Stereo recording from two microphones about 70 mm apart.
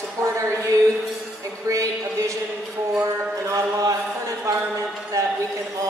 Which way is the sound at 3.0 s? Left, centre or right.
Right.